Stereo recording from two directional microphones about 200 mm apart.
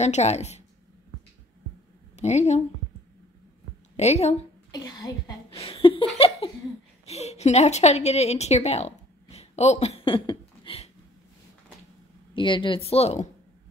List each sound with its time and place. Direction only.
0.0 s a woman's voice: 35° left (ahead or behind)
2.1 s a woman's voice: 35° left (ahead or behind)
3.9 s a woman's voice: 35° left (ahead or behind)
4.6 s speech: 20° left (ahead or behind)
5.5 s a sound: 30° left (ahead or behind)
7.1 s a woman's voice: 35° left (ahead or behind)
12.4 s a woman's voice: 25° left (ahead or behind)